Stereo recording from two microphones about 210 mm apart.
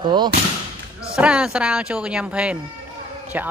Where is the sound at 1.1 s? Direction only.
5° right (ahead or behind).